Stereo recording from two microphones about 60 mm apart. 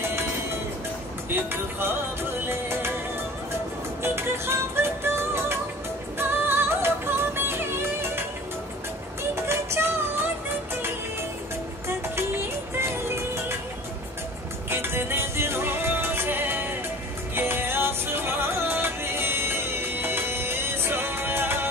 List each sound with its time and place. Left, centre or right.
1.3 s speech: right
2.4 s music: right
4.0 s music: right
9.3 s music: right
14.7 s music: right